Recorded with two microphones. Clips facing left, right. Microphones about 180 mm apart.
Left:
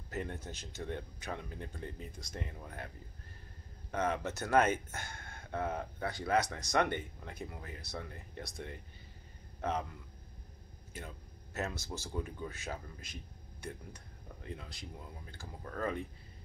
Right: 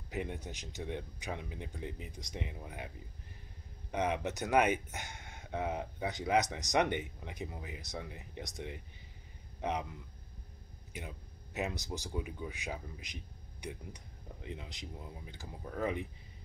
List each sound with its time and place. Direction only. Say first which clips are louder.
0.1 s speech: right 1 dB; 15° right (ahead or behind)
3.9 s a man's voice: right 1 dB; 15° right (ahead or behind)
10.9 s speech: right 1 dB; 15° right (ahead or behind)